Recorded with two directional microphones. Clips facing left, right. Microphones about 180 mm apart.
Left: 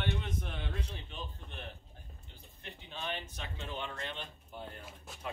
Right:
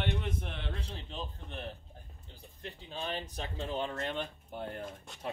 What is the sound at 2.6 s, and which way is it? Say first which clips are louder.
Speech: right 2 dB; 35° right (ahead or behind).